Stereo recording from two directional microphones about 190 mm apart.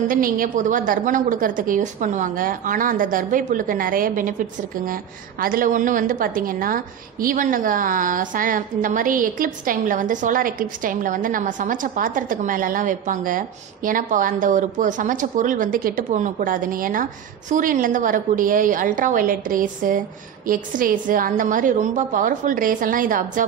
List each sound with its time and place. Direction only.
0.1 s a woman's voice: 45° right (ahead or behind)